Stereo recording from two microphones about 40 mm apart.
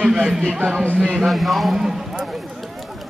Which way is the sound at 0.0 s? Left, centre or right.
Centre.